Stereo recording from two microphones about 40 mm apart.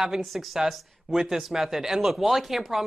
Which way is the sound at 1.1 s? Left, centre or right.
Right.